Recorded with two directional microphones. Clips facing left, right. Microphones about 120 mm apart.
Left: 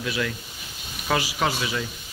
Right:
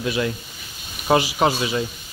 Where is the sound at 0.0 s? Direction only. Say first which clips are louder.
Right 5 dB; 25° right (ahead or behind).